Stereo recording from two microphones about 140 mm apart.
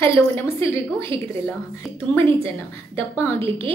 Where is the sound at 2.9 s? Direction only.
20° left (ahead or behind).